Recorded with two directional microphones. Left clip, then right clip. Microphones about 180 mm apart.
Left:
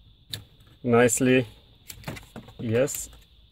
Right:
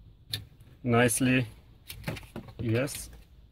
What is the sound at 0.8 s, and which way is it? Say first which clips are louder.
Speech: left 5 dB; 55° left (ahead or behind).